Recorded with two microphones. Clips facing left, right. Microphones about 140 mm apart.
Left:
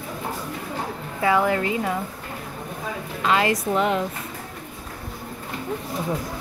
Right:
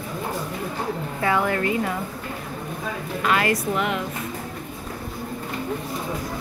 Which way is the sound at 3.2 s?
20° left (ahead or behind).